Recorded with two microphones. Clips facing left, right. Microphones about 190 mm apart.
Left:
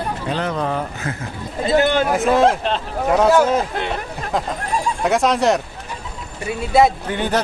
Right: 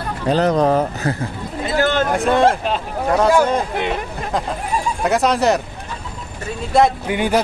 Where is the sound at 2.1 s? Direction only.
Centre (ahead or behind).